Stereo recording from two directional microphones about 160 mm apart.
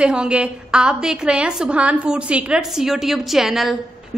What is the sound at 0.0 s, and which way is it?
A woman's voice, 5° right (ahead or behind).